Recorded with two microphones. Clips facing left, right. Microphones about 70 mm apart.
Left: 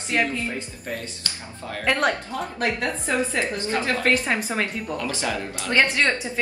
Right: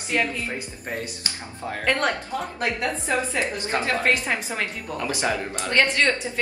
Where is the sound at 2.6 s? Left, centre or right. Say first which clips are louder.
Left 2 dB; right.